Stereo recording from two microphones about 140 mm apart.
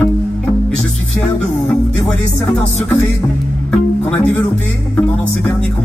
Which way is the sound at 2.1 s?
5° left (ahead or behind).